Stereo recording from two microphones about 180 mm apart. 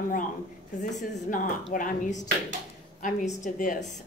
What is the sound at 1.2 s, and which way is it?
A woman's voice, 45° left (ahead or behind).